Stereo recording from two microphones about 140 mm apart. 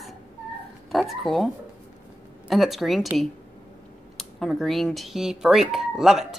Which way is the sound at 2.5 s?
Centre (ahead or behind).